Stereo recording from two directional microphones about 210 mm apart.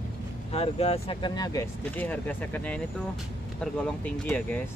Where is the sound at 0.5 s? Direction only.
30° left (ahead or behind).